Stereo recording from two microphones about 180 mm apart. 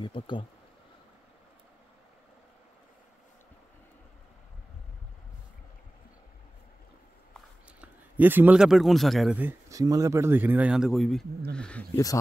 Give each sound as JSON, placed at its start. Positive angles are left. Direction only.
{"t": 0.0, "sound": "speech", "side_deg": 25}
{"t": 7.3, "sound": "speech", "side_deg": -10}